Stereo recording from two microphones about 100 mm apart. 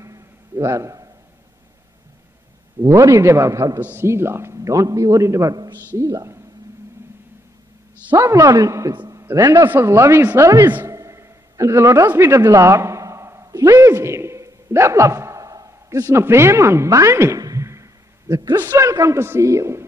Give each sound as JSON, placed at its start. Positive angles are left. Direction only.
{"t": 0.0, "sound": "a sound", "side_deg": -30}
{"t": 2.8, "sound": "a man's voice", "side_deg": -30}
{"t": 8.1, "sound": "a man's voice", "side_deg": -25}
{"t": 8.4, "sound": "a man's voice", "side_deg": -35}
{"t": 9.1, "sound": "a sound", "side_deg": -30}
{"t": 9.7, "sound": "a man's voice", "side_deg": -25}
{"t": 10.9, "sound": "a sound", "side_deg": -30}
{"t": 18.3, "sound": "a man's voice", "side_deg": -40}
{"t": 18.6, "sound": "a man's voice", "side_deg": -20}
{"t": 18.9, "sound": "a man's voice", "side_deg": -30}